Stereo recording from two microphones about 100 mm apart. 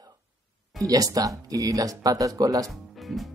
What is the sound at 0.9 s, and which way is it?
Speech, 35° right (ahead or behind).